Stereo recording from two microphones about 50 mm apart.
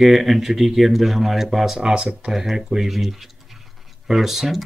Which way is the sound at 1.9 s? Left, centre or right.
Centre.